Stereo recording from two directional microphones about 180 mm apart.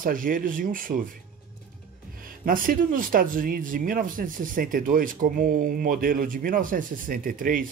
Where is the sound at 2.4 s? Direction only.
50° right (ahead or behind).